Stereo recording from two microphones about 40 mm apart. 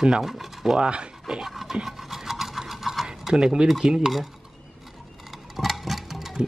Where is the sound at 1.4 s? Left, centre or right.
Centre.